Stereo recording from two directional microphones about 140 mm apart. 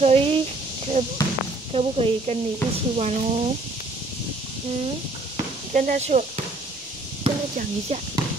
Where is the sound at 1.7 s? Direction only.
45° right (ahead or behind).